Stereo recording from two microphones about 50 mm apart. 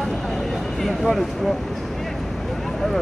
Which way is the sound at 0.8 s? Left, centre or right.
Centre.